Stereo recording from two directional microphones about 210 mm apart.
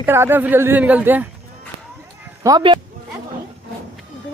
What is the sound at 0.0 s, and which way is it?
Speech, 10° right (ahead or behind).